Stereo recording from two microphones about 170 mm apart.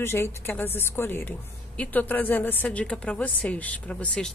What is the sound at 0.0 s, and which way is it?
A woman's voice, 15° left (ahead or behind).